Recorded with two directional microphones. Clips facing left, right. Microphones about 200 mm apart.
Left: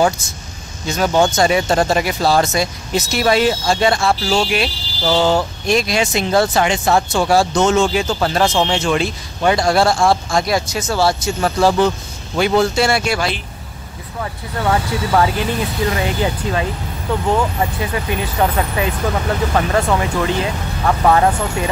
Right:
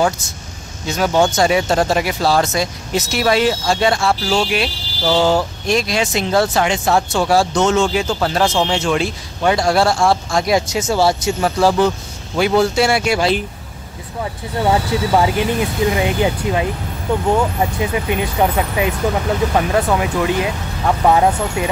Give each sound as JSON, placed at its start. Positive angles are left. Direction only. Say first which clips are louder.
{"t": 0.8, "sound": "speech", "louder": "even", "side_deg": -5}
{"t": 10.4, "sound": "speech", "louder": "right 3 dB", "side_deg": -20}
{"t": 14.2, "sound": "speech", "louder": "right 2 dB", "side_deg": -15}